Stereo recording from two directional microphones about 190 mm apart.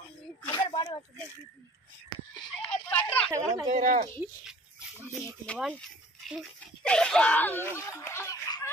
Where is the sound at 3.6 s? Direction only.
40° right (ahead or behind).